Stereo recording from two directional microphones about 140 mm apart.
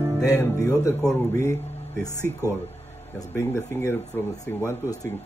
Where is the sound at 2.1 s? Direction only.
15° right (ahead or behind).